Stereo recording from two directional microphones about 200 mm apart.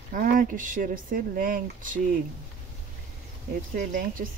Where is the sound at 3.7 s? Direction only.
45° right (ahead or behind).